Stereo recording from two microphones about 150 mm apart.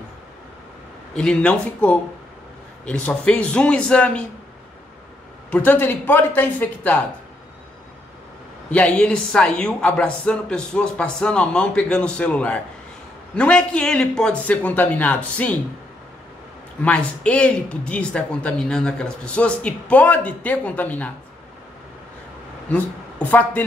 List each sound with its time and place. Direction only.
1.1 s speech: 5° left (ahead or behind)
5.5 s speech: 10° left (ahead or behind)
8.6 s speech: 10° left (ahead or behind)
16.8 s speech: 10° left (ahead or behind)
22.7 s speech: 10° left (ahead or behind)